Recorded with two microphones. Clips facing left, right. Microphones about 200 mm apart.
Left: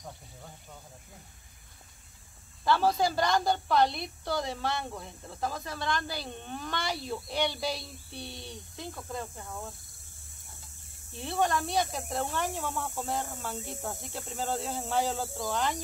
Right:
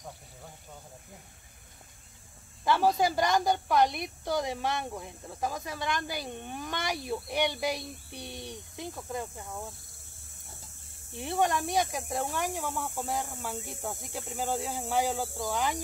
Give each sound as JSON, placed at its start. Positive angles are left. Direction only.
{"t": 2.6, "sound": "a woman's voice", "side_deg": -15}
{"t": 11.1, "sound": "a woman's voice", "side_deg": -15}